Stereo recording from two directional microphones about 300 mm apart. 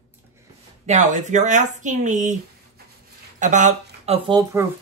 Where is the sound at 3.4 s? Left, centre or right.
Right.